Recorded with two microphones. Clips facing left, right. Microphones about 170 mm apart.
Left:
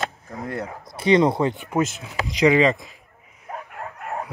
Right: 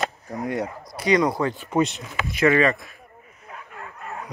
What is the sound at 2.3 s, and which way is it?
Speech, 15° left (ahead or behind).